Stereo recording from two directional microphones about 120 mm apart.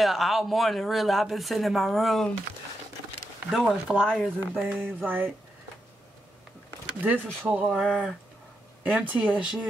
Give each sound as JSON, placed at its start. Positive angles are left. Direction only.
{"t": 0.0, "sound": "speech", "side_deg": 0}
{"t": 3.4, "sound": "speech", "side_deg": -10}
{"t": 7.0, "sound": "speech", "side_deg": -15}